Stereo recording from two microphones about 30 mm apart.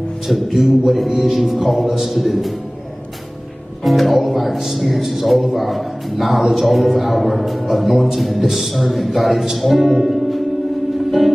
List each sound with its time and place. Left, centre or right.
0.3 s a man's voice: centre
3.8 s a man's voice: centre
11.1 s music: centre